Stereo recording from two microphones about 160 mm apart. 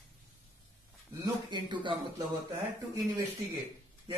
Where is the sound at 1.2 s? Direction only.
30° right (ahead or behind).